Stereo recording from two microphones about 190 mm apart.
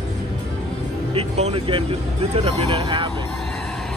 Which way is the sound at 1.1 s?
35° right (ahead or behind).